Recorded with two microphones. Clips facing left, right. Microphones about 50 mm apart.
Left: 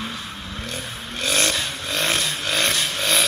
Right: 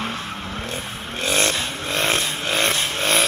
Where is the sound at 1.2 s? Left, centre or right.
Right.